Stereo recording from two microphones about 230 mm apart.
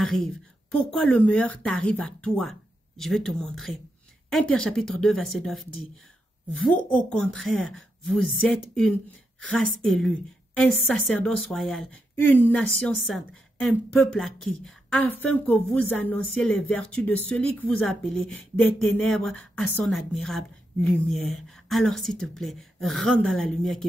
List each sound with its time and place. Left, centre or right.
0.0 s speech: centre
7.1 s speech: centre